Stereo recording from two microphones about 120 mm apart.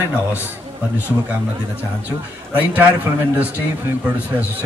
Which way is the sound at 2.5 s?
15° right (ahead or behind).